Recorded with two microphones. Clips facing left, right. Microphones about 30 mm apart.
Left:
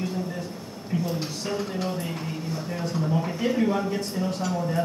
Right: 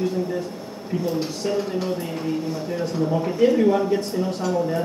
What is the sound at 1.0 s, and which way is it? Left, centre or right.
A woman's voice, centre.